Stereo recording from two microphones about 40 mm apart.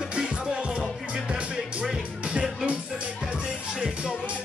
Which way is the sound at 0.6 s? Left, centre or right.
Right.